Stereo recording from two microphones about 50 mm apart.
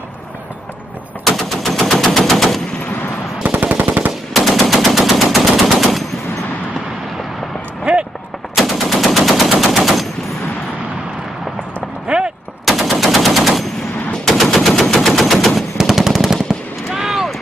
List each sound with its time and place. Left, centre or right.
1.2 s machine gun: centre
3.4 s machine gun: right
4.3 s machine gun: centre
8.5 s machine gun: centre
12.1 s artillery fire: right
12.6 s machine gun: centre
16.3 s fireworks: centre